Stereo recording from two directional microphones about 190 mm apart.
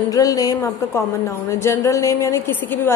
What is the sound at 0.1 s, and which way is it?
A woman's voice, 20° left (ahead or behind).